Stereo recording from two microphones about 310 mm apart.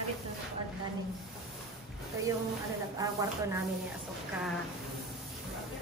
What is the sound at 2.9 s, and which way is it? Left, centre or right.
Chopping, centre.